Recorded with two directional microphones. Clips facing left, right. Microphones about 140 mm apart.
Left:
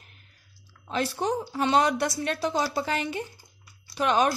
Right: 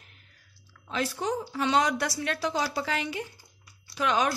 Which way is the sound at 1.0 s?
30° left (ahead or behind).